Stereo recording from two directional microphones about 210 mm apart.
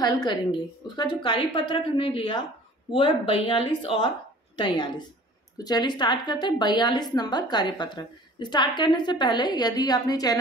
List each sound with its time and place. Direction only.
0.0 s a woman's voice: 20° left (ahead or behind)